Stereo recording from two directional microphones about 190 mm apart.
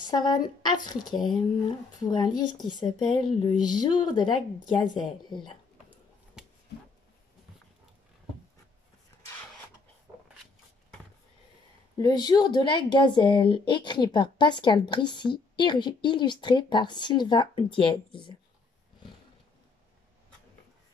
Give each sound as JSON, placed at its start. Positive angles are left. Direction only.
{"t": 0.1, "sound": "speech", "side_deg": 20}
{"t": 6.4, "sound": "a sound", "side_deg": -5}
{"t": 12.0, "sound": "speech", "side_deg": 20}